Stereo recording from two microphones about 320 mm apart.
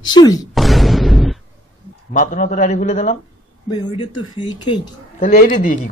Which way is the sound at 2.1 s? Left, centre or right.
Left.